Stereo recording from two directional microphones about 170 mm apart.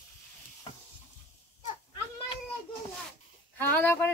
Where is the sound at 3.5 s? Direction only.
10° left (ahead or behind).